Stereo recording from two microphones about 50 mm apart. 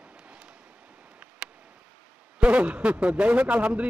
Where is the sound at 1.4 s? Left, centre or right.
Centre.